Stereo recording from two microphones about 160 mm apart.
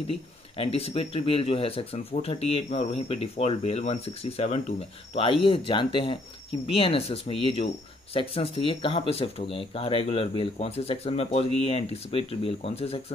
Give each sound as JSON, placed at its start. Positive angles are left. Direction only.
{"t": 0.1, "sound": "speech", "side_deg": 35}